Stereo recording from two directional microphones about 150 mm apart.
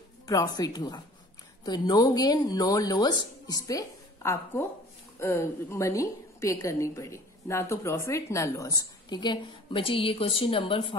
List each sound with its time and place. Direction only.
0.3 s a woman's voice: 25° left (ahead or behind)